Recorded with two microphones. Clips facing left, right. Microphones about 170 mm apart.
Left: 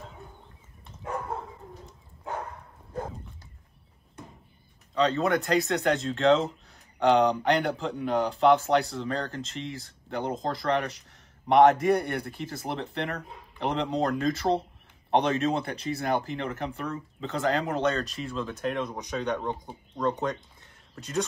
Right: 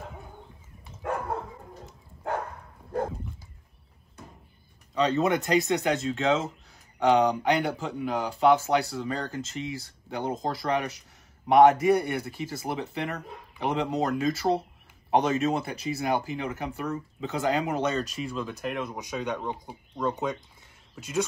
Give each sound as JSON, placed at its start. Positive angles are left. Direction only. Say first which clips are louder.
{"t": 4.9, "sound": "speech", "louder": "even", "side_deg": -10}
{"t": 5.2, "sound": "speech", "louder": "right 1 dB", "side_deg": -20}
{"t": 5.7, "sound": "speech", "louder": "even", "side_deg": -5}